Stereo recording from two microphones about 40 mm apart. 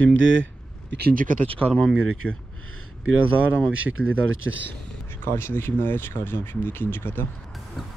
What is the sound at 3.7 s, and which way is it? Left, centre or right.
Speech, right.